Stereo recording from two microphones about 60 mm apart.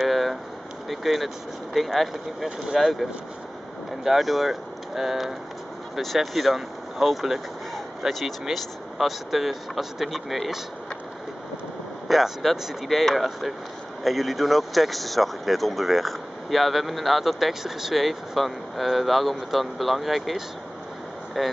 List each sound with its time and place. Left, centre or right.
0.0 s air conditioning: centre
0.8 s speech: centre
12.1 s speech: centre